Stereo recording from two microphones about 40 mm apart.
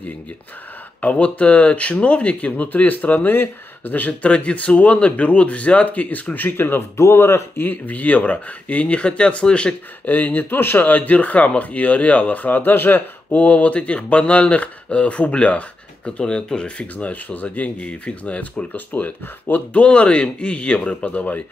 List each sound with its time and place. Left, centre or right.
1.0 s a man's voice: left
3.3 s speech: left
4.3 s a man's voice: left
6.3 s speech: left
7.6 s a man's voice: left
10.0 s speech: left
13.4 s a man's voice: left
16.1 s speech: left
16.8 s a man's voice: left